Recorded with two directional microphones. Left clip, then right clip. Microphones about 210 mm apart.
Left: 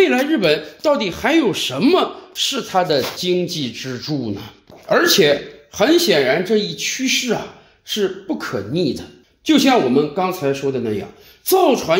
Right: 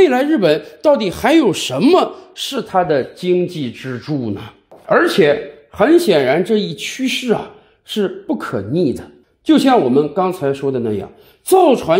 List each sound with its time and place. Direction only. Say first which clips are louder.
0.0 s speech: right 3 dB; 35° right (ahead or behind)